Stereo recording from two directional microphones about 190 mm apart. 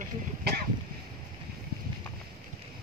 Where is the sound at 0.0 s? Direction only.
55° right (ahead or behind).